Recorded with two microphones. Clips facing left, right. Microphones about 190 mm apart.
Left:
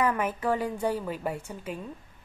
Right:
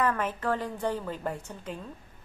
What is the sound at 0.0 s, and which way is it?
A woman's voice, 10° left (ahead or behind).